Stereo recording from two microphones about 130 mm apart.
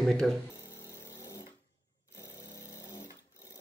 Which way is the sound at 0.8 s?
25° left (ahead or behind).